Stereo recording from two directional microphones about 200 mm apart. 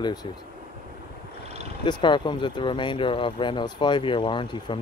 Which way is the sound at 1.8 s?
20° left (ahead or behind).